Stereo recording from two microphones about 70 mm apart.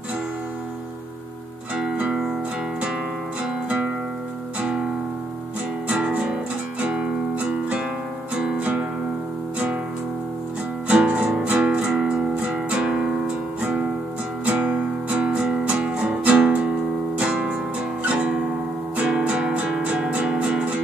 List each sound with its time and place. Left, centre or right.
2.0 s music: centre
3.6 s music: centre
5.9 s music: centre
6.8 s guitar: centre
8.4 s music: centre
10.9 s music: centre